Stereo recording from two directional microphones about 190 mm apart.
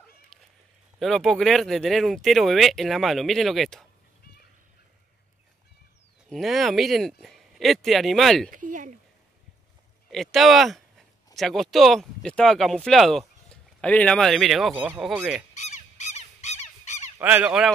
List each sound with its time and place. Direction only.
0.3 s cat: 5° left (ahead or behind)
0.9 s speech: centre (ahead or behind)
6.2 s speech: centre (ahead or behind)
8.5 s speech: 45° right (ahead or behind)
10.0 s speech: centre (ahead or behind)
14.7 s honk: 10° right (ahead or behind)
15.0 s speech: 5° right (ahead or behind)
15.5 s a sound: 35° left (ahead or behind)
17.2 s honk: 10° right (ahead or behind)